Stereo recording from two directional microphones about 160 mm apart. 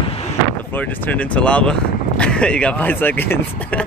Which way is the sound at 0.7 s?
10° left (ahead or behind).